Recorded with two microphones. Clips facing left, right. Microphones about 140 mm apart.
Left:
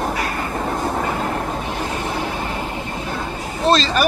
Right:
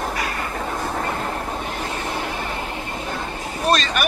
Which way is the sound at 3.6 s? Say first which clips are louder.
Left 4 dB; 30° left (ahead or behind).